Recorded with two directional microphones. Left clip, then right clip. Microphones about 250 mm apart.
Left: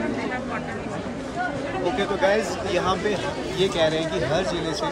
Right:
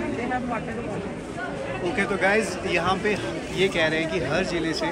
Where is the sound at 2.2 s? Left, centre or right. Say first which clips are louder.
Left 1 dB; centre.